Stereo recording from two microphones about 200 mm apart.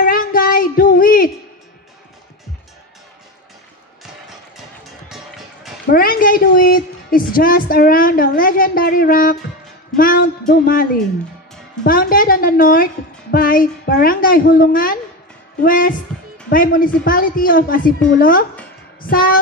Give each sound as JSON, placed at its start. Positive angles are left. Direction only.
{"t": 0.0, "sound": "child singing", "side_deg": 45}
{"t": 5.9, "sound": "a woman's voice", "side_deg": 45}